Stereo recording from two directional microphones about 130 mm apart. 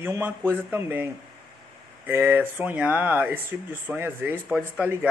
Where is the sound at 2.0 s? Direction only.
15° right (ahead or behind).